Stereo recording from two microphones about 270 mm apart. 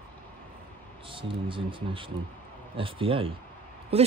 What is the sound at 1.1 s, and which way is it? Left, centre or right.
Speech, centre.